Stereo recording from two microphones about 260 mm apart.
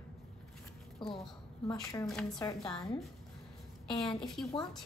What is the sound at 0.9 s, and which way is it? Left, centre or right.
A woman's voice, centre.